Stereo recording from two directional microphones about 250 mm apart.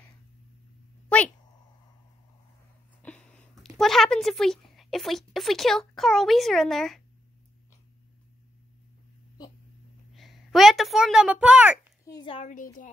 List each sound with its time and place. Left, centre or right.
1.0 s a sound: centre
3.0 s a woman's voice: centre
10.1 s a child's voice: centre
12.0 s a child's voice: centre